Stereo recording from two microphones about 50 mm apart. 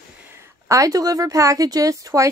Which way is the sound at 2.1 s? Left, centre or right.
Right.